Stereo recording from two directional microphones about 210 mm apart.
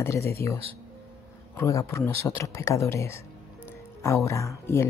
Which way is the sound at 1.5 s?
15° left (ahead or behind).